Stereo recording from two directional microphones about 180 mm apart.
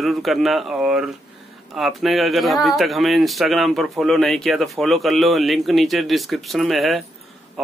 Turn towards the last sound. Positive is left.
turn(degrees=0)  # may be behind; listen again after turning